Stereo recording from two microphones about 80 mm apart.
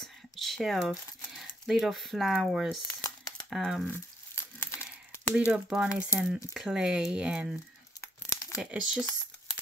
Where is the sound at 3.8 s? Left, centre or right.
Left.